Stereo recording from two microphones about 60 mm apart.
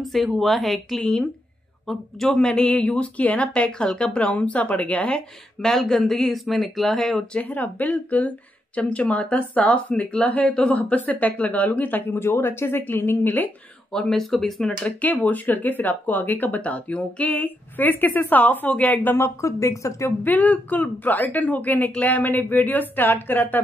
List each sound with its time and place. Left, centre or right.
0.0 s speech: centre; by 5.2 s left
5.6 s speech: centre
7.4 s speech: left
12.1 s speech: left
13.9 s speech: centre
14.8 s speech: left
19.1 s speech: left
20.2 s speech: left